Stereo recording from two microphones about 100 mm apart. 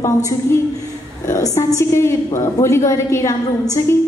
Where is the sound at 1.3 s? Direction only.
30° left (ahead or behind).